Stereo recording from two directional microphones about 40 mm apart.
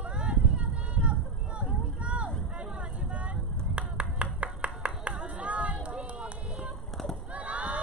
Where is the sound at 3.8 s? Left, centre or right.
Right.